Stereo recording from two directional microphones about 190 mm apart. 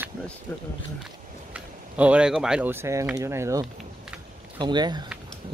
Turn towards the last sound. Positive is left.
turn(degrees=-25)  # may be behind; listen again after turning